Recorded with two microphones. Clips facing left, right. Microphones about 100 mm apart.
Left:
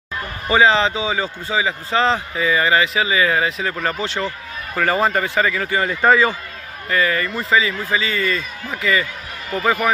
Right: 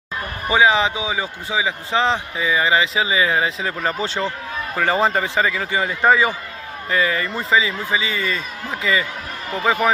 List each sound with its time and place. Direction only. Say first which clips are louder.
0.5 s a man's voice: left 1 dB; 10° right (ahead or behind)
5.7 s a man's voice: left 1 dB; 10° right (ahead or behind); by 7.5 s 30° right (ahead or behind)
7.5 s a man's voice: left 1 dB; 20° right (ahead or behind)